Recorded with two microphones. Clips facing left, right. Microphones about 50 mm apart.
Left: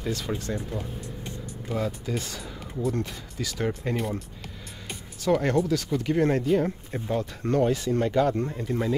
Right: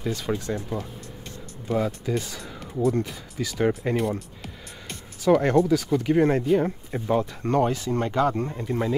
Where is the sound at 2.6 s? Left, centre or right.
Centre.